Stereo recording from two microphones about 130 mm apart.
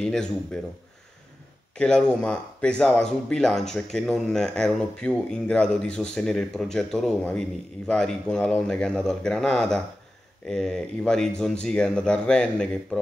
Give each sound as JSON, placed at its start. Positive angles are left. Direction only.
{"t": 0.0, "sound": "speech", "side_deg": 5}
{"t": 1.8, "sound": "speech", "side_deg": 5}